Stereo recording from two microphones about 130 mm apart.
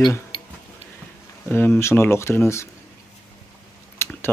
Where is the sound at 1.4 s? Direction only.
10° left (ahead or behind).